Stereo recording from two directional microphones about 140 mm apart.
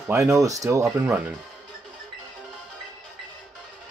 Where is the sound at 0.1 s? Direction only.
20° right (ahead or behind).